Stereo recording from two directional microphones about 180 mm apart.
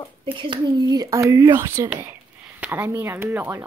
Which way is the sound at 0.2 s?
25° right (ahead or behind).